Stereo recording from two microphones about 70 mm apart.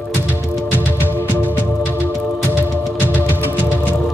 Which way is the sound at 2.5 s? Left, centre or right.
Right.